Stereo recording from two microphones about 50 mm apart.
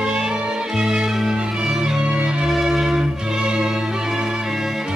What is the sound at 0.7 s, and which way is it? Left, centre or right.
Music, centre.